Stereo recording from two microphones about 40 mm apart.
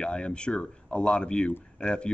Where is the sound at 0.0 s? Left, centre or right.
Left.